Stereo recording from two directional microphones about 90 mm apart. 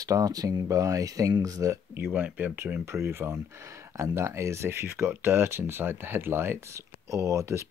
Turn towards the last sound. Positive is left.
turn(degrees=-35)  # may be behind; listen again after turning